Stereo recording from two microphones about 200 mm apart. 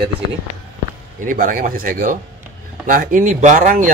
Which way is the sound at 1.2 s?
40° right (ahead or behind).